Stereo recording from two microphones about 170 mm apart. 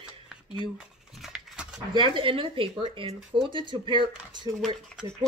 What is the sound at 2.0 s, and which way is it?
Speech, 30° right (ahead or behind).